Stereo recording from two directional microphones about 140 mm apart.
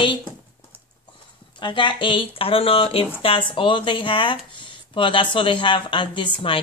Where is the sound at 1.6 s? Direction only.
35° left (ahead or behind).